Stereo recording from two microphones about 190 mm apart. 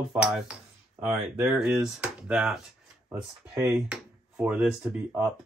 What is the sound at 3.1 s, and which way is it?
Speech, 15° right (ahead or behind).